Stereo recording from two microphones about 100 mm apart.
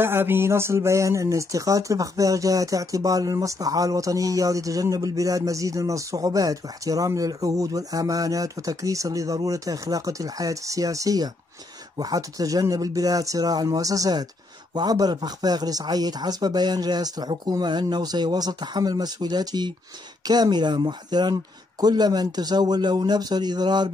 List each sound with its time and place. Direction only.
0.0 s speech: 20° right (ahead or behind); by 23.9 s 45° right (ahead or behind)